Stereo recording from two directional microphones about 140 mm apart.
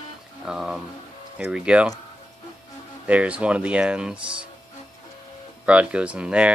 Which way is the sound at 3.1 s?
10° right (ahead or behind).